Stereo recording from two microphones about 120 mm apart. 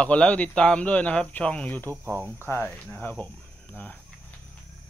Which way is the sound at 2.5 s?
15° left (ahead or behind).